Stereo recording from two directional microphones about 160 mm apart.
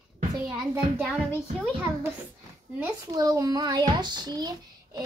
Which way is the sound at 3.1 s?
25° right (ahead or behind).